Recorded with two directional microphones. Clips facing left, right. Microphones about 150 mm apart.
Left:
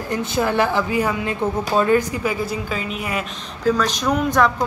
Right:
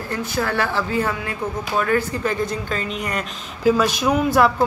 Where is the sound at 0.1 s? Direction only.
20° left (ahead or behind).